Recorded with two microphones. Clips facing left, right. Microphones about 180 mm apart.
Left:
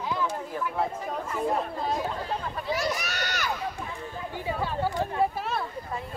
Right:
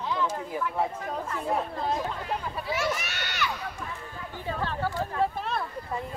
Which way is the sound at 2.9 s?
40° left (ahead or behind).